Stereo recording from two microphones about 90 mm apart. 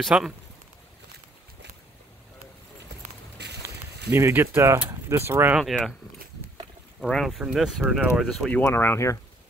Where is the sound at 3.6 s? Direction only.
35° right (ahead or behind).